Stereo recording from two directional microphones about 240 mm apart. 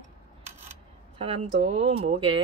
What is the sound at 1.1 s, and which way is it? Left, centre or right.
Speech, right.